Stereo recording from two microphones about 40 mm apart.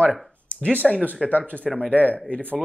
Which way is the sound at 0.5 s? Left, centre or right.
Left.